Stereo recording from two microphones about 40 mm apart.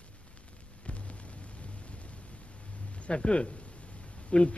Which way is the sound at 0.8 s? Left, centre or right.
Left.